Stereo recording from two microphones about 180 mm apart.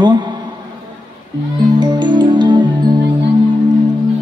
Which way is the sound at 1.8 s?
25° right (ahead or behind).